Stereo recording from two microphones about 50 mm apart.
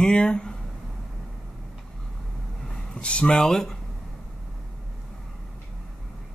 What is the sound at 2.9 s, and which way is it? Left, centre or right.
Speech, left.